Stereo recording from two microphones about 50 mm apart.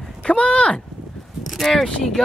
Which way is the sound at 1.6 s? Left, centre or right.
Centre.